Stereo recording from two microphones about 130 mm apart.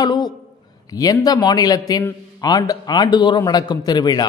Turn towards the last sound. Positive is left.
turn(degrees=30)  # may be behind; listen again after turning